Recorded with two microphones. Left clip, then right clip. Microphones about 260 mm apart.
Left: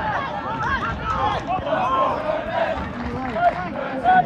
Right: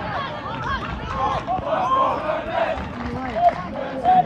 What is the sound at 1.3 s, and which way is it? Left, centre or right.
Chatter, left.